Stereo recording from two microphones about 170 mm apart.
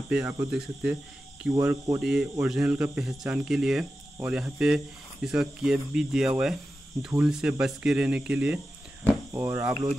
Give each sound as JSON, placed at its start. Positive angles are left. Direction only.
{"t": 0.1, "sound": "speech", "side_deg": -10}
{"t": 2.0, "sound": "speech", "side_deg": -5}